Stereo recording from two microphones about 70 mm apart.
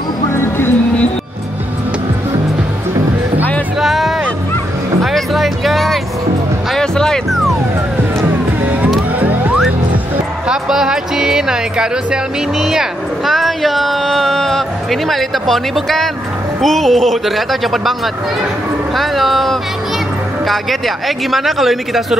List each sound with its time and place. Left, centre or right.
0.3 s music: left
3.8 s music: centre
9.2 s music: right
10.5 s music: centre
12.5 s a sound: centre
16.6 s speech: centre